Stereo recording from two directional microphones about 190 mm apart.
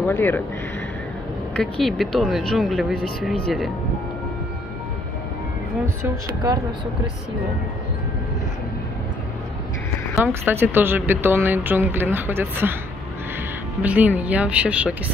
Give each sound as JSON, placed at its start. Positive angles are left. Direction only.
{"t": 0.0, "sound": "speech", "side_deg": 10}
{"t": 1.6, "sound": "speech", "side_deg": 0}
{"t": 6.0, "sound": "speech", "side_deg": -20}
{"t": 10.2, "sound": "speech", "side_deg": -10}
{"t": 13.8, "sound": "speech", "side_deg": -10}